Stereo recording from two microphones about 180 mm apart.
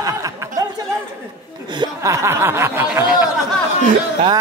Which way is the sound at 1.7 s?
20° right (ahead or behind).